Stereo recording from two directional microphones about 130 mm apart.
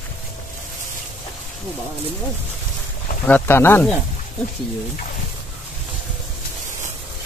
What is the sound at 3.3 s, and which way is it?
Speech, 15° left (ahead or behind).